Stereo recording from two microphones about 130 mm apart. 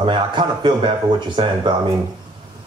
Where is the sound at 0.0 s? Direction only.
40° right (ahead or behind).